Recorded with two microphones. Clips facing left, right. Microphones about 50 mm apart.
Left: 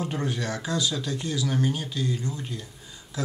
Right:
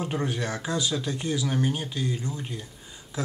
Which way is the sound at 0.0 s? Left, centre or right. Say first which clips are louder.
Even; centre.